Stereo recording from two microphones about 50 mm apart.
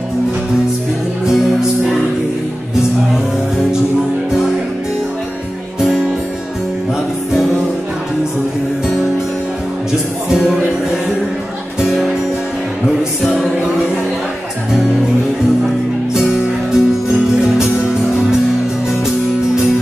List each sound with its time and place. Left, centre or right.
1.2 s music: centre
10.3 s music: centre
16.2 s music: centre